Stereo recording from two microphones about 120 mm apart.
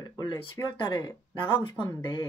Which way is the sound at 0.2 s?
40° left (ahead or behind).